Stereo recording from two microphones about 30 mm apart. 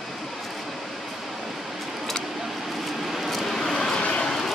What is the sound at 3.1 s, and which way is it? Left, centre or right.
Vehicle, centre.